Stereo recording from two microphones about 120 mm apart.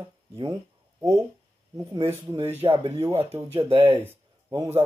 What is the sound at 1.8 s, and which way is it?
Speech, 20° right (ahead or behind).